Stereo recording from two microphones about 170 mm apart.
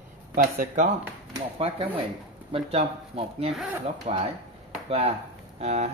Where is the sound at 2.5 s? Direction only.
35° right (ahead or behind).